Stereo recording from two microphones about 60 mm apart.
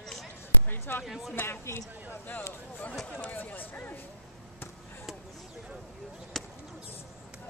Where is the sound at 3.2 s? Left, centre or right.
Left.